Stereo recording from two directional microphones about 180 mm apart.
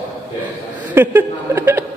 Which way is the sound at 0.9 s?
10° right (ahead or behind).